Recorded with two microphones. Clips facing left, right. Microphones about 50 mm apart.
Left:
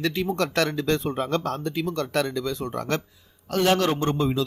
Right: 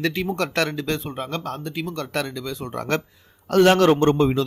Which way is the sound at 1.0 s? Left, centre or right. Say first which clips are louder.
Left 4 dB; centre.